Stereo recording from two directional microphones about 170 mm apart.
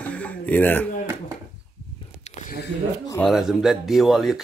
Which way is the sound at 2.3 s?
40° left (ahead or behind).